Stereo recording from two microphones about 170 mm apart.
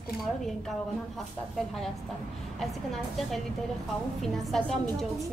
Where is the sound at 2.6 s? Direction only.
Centre (ahead or behind).